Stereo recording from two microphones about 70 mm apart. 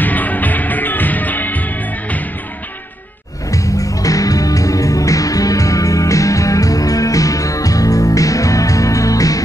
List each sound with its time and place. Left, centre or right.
0.0 s music: left
3.4 s music: left